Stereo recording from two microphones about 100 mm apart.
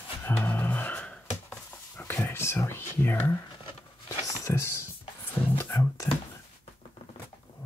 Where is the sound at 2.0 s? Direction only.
20° left (ahead or behind).